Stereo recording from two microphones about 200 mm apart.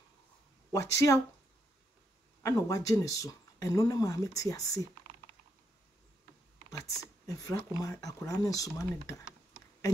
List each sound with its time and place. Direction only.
0.7 s speech: 15° left (ahead or behind)
2.4 s speech: 15° left (ahead or behind)
7.2 s speech: 20° left (ahead or behind)